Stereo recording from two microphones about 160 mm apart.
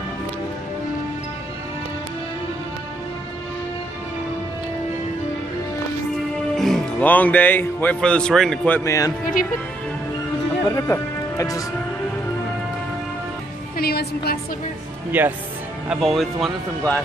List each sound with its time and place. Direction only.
6.5 s speech: 5° left (ahead or behind); by 9.1 s 20° left (ahead or behind)
10.7 s speech: 20° left (ahead or behind)
13.7 s a woman's voice: 75° left (ahead or behind)
15.0 s speech: 10° right (ahead or behind)
15.9 s speech: centre (ahead or behind)